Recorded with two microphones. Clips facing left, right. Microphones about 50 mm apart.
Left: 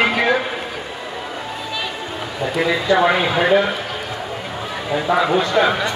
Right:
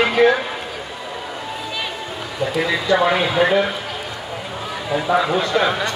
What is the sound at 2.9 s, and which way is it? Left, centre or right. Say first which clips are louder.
Speech: left 1 dB; centre.